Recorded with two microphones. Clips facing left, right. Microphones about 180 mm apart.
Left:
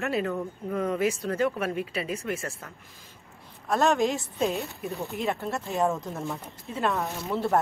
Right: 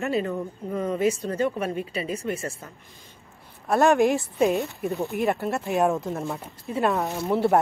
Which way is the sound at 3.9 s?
60° right (ahead or behind).